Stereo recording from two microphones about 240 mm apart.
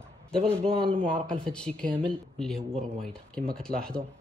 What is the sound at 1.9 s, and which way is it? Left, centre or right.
Speech, right.